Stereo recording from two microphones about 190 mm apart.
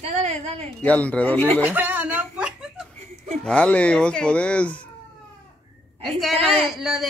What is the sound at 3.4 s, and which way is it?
Speech, 5° left (ahead or behind).